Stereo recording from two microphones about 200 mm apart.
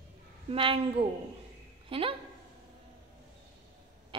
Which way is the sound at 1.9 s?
25° right (ahead or behind).